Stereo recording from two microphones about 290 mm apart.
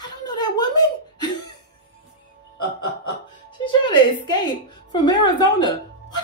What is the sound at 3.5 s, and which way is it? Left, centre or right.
Music, centre.